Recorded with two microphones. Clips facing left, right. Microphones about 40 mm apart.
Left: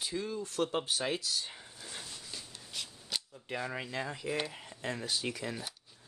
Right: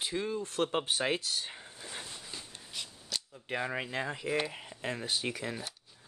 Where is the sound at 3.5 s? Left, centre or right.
Right.